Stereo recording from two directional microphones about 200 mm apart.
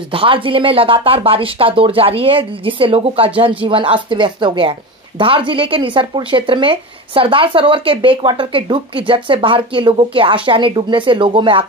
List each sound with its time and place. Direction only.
0.1 s speech: 25° right (ahead or behind)